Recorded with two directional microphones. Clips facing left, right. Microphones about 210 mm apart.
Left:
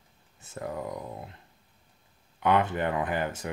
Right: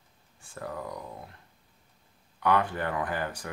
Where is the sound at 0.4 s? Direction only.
20° left (ahead or behind).